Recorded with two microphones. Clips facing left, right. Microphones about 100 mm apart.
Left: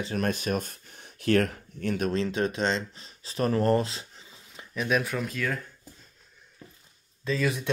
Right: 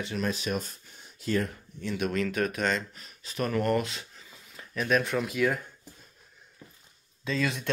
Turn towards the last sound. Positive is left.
turn(degrees=5)  # may be behind; listen again after turning